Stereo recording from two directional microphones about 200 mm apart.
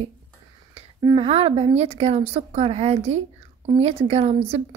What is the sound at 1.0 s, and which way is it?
A woman's voice, 30° right (ahead or behind).